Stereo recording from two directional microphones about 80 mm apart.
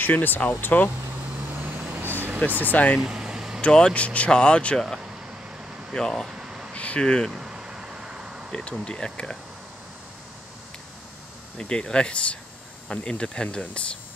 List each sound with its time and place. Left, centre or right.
0.0 s speech: left
1.1 s a sound: right
1.9 s vehicle: right
2.6 s speech: centre
3.0 s vehicle: centre
3.6 s speech: centre
5.9 s speech: centre
6.3 s air conditioning: centre
6.7 s speech: centre
7.3 s vehicle: centre
8.5 s speech: centre
11.5 s speech: centre